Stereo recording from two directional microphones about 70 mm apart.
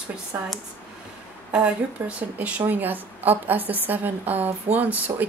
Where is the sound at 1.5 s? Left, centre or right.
Centre.